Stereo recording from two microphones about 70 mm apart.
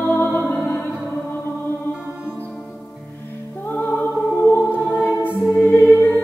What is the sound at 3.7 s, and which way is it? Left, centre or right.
Music, left.